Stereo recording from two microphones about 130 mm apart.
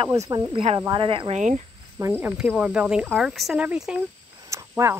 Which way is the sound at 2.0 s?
15° right (ahead or behind).